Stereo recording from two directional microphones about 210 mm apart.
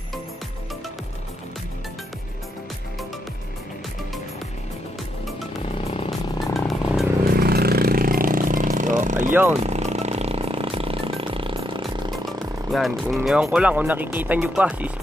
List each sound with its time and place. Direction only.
6.4 s music: centre (ahead or behind)
7.3 s vehicle: 45° right (ahead or behind)
9.3 s speech: 10° right (ahead or behind)
9.6 s vehicle: 30° right (ahead or behind)
11.8 s music: centre (ahead or behind)
13.1 s speech: centre (ahead or behind)